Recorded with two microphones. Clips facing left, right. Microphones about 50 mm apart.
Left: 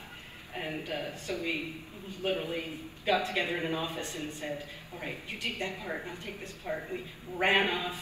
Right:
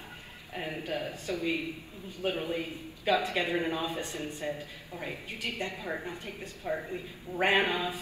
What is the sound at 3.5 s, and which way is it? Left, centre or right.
A man's voice, right.